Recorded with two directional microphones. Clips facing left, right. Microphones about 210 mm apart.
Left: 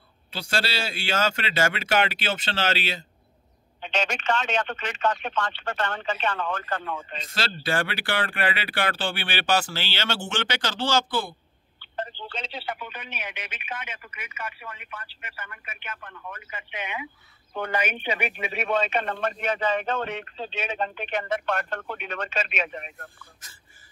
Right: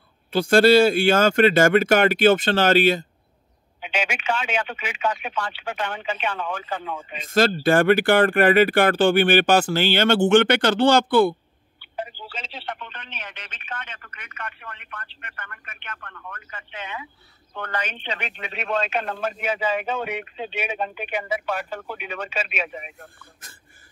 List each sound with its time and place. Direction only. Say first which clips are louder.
0.3 s speech: right 15 dB; 50° right (ahead or behind)
3.8 s speech: right 1 dB; 10° right (ahead or behind)
7.2 s speech: right 12 dB; 50° right (ahead or behind)
11.8 s a man's voice: right 1 dB; 10° right (ahead or behind)